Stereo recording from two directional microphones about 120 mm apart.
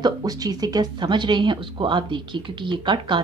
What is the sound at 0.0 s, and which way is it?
A woman's voice, 35° right (ahead or behind).